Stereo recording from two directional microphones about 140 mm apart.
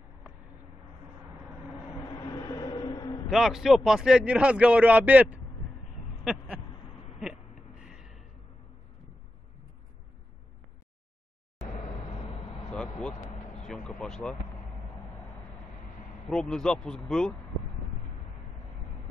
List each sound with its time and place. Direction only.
2.1 s train: 30° left (ahead or behind)
3.3 s speech: centre (ahead or behind)
7.8 s a sound: 5° right (ahead or behind)
11.6 s vehicle: 50° left (ahead or behind)
12.7 s vehicle: 5° left (ahead or behind)
16.3 s speech: 5° left (ahead or behind)